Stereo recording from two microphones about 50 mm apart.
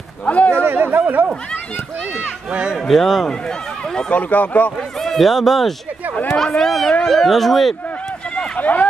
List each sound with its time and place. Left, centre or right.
0.2 s a man's voice: left
0.7 s speech: right
2.5 s speech: centre
2.9 s speech: centre
4.1 s speech: left
5.0 s speech: centre
8.5 s speech: left